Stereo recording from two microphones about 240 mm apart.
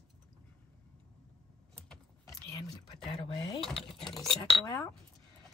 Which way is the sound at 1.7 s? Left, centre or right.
Centre.